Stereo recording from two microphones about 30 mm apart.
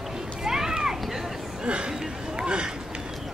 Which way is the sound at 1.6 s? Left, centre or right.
Right.